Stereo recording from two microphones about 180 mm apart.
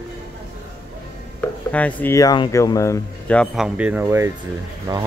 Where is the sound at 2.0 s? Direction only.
20° left (ahead or behind); by 5.0 s 20° right (ahead or behind).